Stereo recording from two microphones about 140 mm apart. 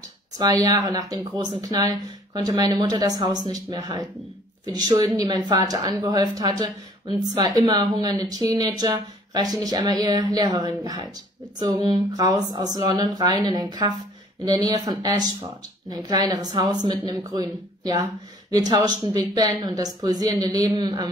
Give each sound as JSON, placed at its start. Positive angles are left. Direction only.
{"t": 0.4, "sound": "speech", "side_deg": -25}